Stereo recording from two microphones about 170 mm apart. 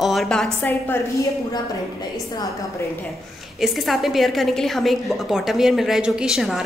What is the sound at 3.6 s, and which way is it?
A woman's voice, centre (ahead or behind).